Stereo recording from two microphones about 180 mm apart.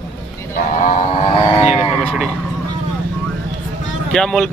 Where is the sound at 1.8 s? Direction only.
5° left (ahead or behind).